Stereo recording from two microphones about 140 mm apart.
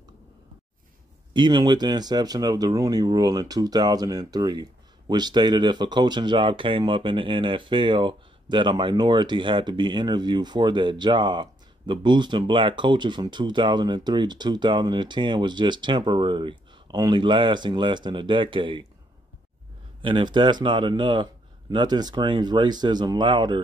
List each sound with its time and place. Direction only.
1.3 s speech: 35° right (ahead or behind)
20.0 s speech: 35° right (ahead or behind)